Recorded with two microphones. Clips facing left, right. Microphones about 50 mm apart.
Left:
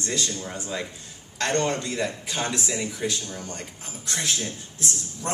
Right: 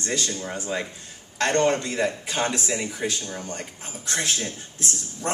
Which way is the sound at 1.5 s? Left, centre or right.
Right.